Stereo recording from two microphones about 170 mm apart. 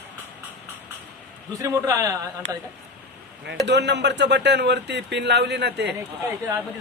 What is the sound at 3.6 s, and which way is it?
Speech, 90° right.